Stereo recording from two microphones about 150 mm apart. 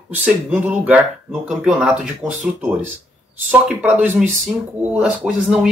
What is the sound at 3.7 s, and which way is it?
Speech, 10° right (ahead or behind).